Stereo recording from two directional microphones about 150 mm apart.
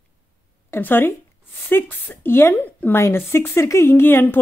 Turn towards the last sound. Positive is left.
turn(degrees=15)  # may be behind; listen again after turning